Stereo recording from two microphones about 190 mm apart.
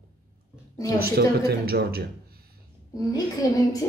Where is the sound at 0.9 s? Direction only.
55° right (ahead or behind).